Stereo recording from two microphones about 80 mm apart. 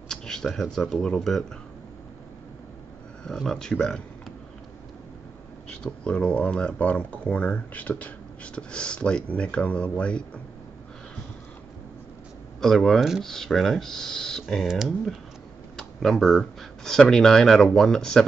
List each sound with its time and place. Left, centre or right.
0.1 s a sound: centre
0.5 s speech: centre
3.3 s speech: centre
5.7 s speech: centre
12.5 s speech: centre
14.7 s speech: centre